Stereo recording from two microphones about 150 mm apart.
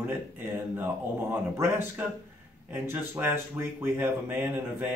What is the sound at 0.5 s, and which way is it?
Speech, 15° right (ahead or behind).